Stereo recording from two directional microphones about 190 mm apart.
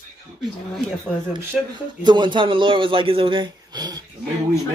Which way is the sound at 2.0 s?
25° right (ahead or behind).